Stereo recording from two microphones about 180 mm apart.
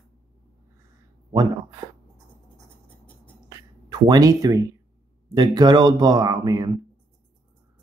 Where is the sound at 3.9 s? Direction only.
20° right (ahead or behind).